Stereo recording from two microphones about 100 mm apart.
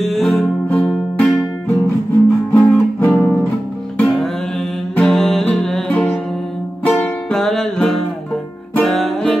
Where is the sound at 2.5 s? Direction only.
15° left (ahead or behind).